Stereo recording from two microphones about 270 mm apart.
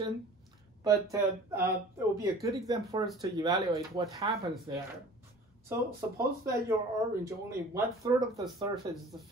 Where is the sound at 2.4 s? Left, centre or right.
Centre.